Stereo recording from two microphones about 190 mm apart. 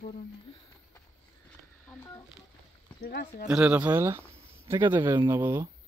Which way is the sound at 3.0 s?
55° left (ahead or behind).